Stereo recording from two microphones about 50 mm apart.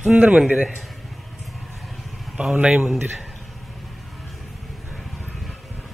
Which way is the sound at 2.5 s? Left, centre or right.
Right.